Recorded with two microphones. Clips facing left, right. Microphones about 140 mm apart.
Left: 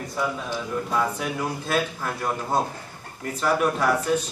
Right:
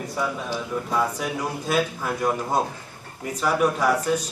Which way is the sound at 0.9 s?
Centre (ahead or behind).